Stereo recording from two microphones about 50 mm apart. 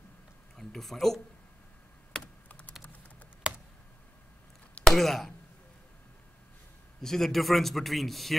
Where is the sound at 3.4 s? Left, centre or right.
Right.